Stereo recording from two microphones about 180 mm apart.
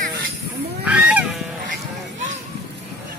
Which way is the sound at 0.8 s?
10° right (ahead or behind).